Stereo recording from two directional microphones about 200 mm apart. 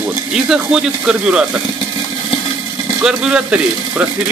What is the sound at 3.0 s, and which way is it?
Speech, 5° right (ahead or behind).